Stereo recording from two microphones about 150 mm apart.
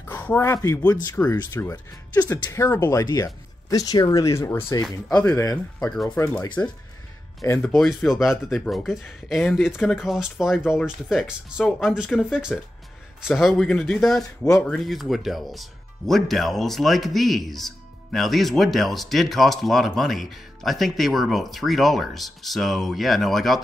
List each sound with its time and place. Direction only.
0.0 s speech: 10° left (ahead or behind)